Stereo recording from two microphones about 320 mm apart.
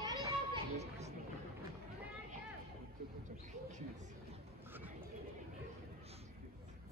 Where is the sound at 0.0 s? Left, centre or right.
Centre.